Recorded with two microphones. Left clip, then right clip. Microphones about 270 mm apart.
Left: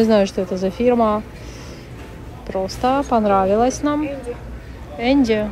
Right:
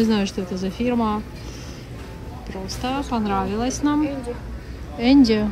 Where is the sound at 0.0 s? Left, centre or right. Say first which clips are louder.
Left 7 dB; centre.